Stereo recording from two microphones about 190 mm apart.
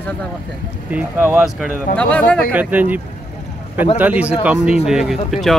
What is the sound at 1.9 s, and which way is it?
Speech, 10° left (ahead or behind).